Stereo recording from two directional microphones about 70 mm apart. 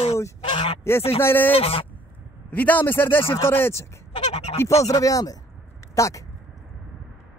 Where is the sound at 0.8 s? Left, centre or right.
Left.